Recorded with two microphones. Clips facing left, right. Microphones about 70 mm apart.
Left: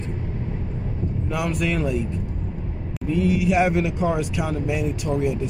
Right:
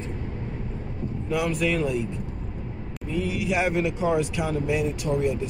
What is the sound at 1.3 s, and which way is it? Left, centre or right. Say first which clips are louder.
Speech: right 1 dB; centre.